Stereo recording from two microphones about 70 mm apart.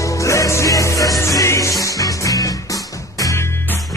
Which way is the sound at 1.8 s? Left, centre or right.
Left.